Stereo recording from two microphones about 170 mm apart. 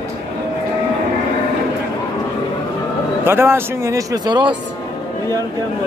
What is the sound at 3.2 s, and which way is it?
Speech, 15° right (ahead or behind).